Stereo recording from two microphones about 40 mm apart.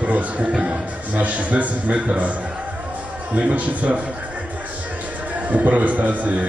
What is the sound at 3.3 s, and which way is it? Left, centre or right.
Speech, right.